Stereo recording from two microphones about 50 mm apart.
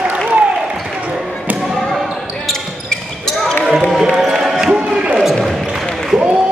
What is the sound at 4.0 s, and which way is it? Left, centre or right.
Basketball bounce, centre.